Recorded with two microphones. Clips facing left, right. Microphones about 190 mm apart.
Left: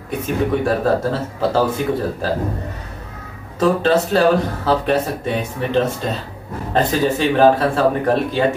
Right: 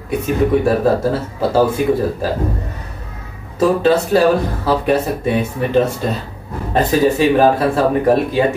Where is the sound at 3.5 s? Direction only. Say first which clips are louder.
Right 2 dB; 10° right (ahead or behind).